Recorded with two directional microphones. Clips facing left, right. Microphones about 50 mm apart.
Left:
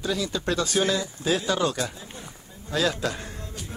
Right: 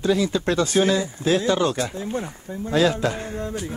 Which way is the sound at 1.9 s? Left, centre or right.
Right.